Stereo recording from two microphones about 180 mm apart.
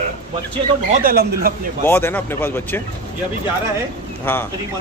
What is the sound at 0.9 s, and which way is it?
Speech, 55° right (ahead or behind).